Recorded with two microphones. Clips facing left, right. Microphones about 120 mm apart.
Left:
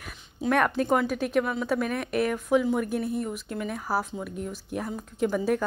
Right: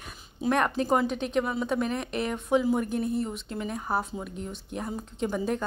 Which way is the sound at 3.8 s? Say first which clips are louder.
Left 1 dB; 5° left (ahead or behind).